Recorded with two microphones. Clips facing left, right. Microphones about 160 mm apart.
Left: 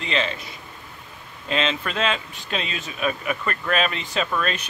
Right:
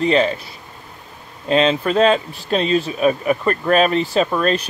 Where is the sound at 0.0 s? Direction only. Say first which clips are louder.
Right 10 dB; 40° right (ahead or behind).